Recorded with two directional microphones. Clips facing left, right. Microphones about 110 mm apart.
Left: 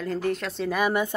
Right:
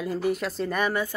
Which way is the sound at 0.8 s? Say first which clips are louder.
Left 2 dB; 15° left (ahead or behind).